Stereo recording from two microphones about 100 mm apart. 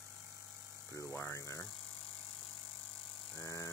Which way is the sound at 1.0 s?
25° left (ahead or behind).